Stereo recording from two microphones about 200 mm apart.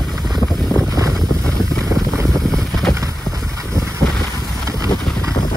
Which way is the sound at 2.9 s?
15° right (ahead or behind).